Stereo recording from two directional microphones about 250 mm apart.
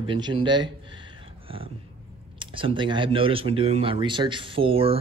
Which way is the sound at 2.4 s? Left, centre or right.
Right.